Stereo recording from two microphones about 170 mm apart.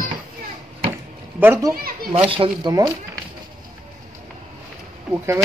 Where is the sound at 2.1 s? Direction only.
30° right (ahead or behind).